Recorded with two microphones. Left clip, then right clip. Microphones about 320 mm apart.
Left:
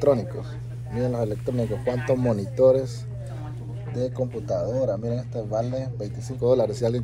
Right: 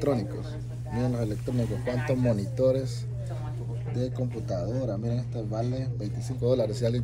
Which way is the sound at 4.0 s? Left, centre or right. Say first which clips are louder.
Left 6 dB; centre.